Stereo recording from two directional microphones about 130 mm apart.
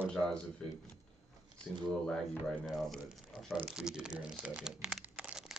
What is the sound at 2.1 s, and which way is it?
Speech, 5° left (ahead or behind).